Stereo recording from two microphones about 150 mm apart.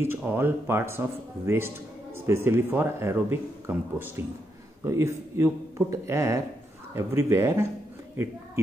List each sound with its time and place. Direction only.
0.0 s speech: 15° right (ahead or behind)